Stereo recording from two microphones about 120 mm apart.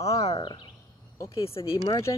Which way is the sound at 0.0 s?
65° left (ahead or behind).